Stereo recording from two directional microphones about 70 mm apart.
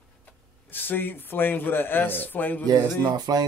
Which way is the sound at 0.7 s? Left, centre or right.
Left.